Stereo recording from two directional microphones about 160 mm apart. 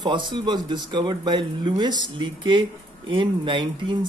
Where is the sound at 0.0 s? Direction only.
30° right (ahead or behind).